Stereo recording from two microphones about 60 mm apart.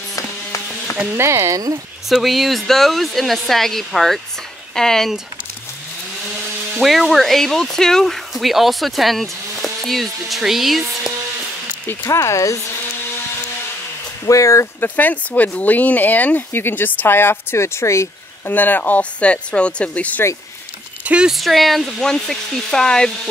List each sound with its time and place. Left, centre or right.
1.1 s speech: right
2.0 s speech: centre
6.8 s speech: centre
12.0 s speech: left
14.2 s speech: left
14.8 s speech: left
18.5 s speech: left
21.0 s a sound: right
21.3 s speech: centre